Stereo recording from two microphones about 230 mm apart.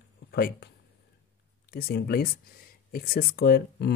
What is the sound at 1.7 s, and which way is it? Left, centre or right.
Speech, left.